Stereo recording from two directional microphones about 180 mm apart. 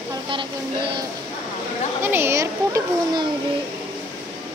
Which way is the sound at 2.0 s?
10° right (ahead or behind).